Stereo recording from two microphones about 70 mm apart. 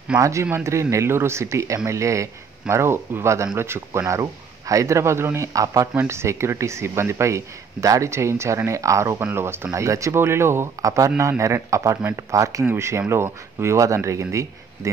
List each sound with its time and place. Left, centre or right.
0.2 s speech: right
6.0 s speech: right
9.2 s speech: right
9.7 s speech: right
10.8 s speech: right